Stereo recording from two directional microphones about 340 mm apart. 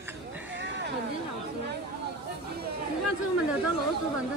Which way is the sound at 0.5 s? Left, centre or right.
Right.